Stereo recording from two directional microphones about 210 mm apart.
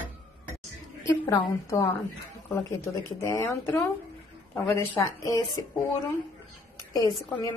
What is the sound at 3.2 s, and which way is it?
A woman's voice, 10° left (ahead or behind).